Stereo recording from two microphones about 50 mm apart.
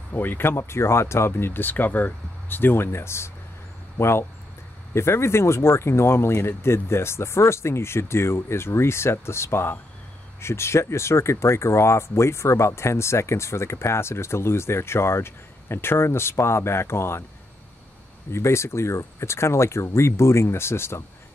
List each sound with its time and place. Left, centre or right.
0.1 s speech: left
1.5 s speech: left
18.3 s speech: left